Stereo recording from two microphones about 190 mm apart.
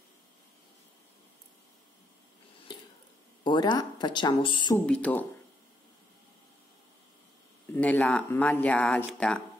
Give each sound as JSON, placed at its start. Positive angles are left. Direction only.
{"t": 3.4, "sound": "speech", "side_deg": 25}
{"t": 4.7, "sound": "speech", "side_deg": 5}
{"t": 7.7, "sound": "speech", "side_deg": 10}